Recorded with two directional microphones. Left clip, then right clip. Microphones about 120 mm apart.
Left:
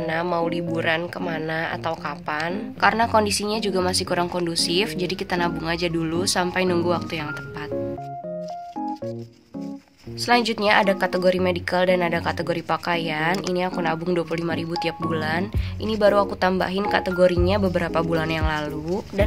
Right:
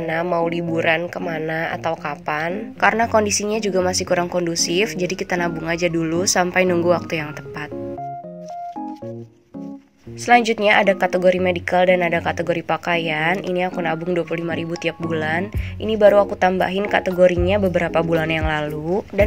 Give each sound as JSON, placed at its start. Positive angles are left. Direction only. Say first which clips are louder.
{"t": 0.2, "sound": "speech", "louder": "right 5 dB", "side_deg": -10}
{"t": 0.5, "sound": "speech", "louder": "right 4 dB", "side_deg": -30}
{"t": 1.2, "sound": "speech", "louder": "right 3 dB", "side_deg": -15}
{"t": 1.5, "sound": "speech", "louder": "right 4 dB", "side_deg": -35}
{"t": 10.2, "sound": "speech", "louder": "right 5 dB", "side_deg": -20}